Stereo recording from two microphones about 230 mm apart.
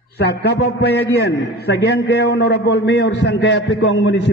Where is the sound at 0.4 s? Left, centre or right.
Left.